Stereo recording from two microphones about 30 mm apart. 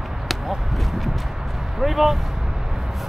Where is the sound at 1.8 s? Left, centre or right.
Centre.